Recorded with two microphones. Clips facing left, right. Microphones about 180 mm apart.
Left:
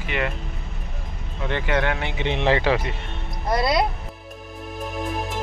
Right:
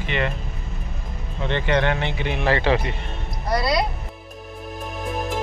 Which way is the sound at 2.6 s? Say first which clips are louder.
Right 1 dB; 5° left (ahead or behind).